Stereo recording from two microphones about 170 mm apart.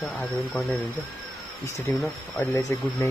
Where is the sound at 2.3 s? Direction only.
20° left (ahead or behind).